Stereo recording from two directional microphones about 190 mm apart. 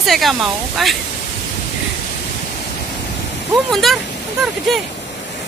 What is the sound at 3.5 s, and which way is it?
Speech, centre (ahead or behind).